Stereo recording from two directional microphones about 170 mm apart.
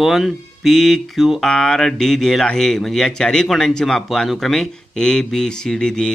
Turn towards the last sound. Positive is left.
turn(degrees=5)  # may be behind; listen again after turning